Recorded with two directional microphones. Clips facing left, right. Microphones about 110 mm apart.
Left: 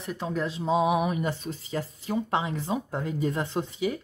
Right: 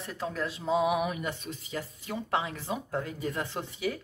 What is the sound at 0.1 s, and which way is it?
A woman's voice, 20° left (ahead or behind).